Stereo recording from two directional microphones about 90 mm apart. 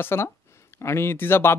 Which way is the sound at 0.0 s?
25° left (ahead or behind).